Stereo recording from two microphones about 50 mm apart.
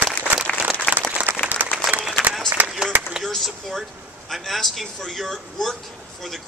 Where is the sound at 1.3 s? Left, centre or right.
Right.